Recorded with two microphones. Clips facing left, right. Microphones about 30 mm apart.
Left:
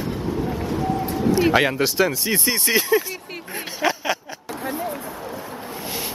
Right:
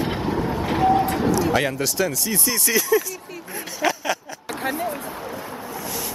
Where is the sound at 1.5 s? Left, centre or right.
Left.